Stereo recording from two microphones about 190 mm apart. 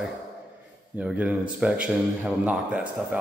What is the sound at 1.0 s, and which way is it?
Speech, 5° right (ahead or behind).